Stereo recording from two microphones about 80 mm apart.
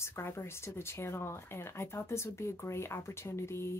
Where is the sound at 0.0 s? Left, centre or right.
Left.